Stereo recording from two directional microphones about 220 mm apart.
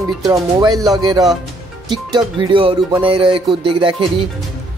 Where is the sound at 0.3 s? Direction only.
15° right (ahead or behind).